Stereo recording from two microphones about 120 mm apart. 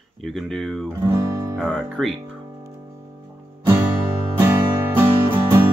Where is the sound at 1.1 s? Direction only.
25° right (ahead or behind).